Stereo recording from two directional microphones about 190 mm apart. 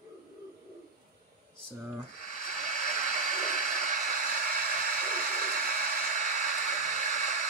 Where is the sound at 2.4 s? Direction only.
40° right (ahead or behind).